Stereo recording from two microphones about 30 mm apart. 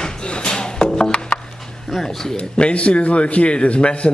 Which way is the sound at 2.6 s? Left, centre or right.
Left.